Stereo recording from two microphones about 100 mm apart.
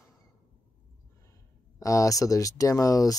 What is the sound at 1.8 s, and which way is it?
Speech, 35° left (ahead or behind).